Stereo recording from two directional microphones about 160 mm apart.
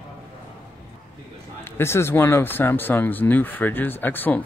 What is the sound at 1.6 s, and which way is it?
Speech, 15° left (ahead or behind).